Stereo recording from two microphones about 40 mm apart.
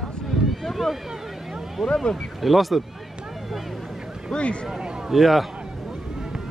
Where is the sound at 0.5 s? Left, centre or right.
Centre.